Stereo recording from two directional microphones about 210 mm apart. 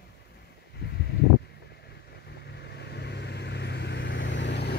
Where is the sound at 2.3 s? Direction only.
50° left (ahead or behind).